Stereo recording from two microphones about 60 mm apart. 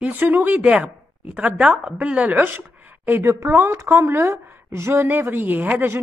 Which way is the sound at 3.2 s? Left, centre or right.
Right.